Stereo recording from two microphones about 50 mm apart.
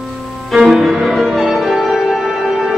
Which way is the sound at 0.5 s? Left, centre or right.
Centre.